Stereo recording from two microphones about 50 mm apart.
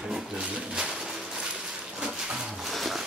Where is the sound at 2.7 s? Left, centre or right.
Centre.